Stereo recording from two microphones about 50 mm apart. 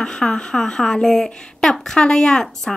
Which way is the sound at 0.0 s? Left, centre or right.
Centre.